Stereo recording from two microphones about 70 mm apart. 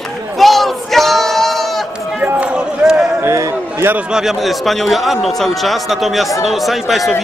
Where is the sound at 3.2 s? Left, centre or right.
Right.